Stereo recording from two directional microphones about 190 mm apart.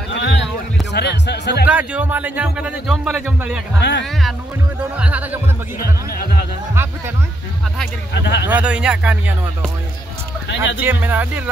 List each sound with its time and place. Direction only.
0.1 s a sound: 70° left (ahead or behind)
0.9 s music: 65° left (ahead or behind)
1.7 s speech: 10° right (ahead or behind)
3.8 s speech: 65° left (ahead or behind)
4.9 s speech: 5° right (ahead or behind)
5.8 s a man's voice: 50° left (ahead or behind)
8.1 s speech: 65° left (ahead or behind)
8.5 s speech: 5° right (ahead or behind)
10.8 s speech: 10° right (ahead or behind)